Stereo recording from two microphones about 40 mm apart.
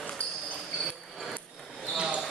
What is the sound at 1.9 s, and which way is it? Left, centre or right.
Basketball bounce, right.